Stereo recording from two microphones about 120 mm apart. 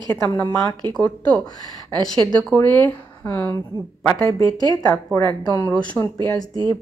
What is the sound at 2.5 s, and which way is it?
Speech, 10° left (ahead or behind).